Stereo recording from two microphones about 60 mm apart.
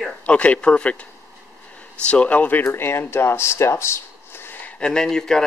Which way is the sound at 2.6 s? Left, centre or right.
Left.